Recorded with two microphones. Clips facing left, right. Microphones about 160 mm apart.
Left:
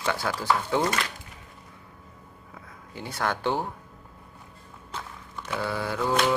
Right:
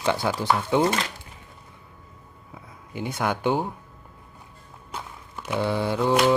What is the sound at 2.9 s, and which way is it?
Speech, 20° right (ahead or behind).